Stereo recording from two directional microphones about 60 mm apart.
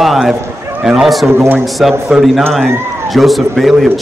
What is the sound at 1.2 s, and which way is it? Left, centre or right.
Speech, right.